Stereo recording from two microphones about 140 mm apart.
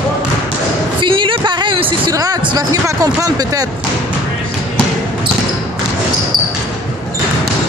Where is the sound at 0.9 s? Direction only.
35° right (ahead or behind).